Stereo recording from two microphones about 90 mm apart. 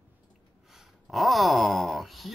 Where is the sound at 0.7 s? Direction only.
Centre (ahead or behind).